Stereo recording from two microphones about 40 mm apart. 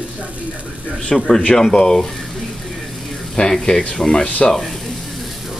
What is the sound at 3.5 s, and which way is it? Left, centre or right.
Rub, centre.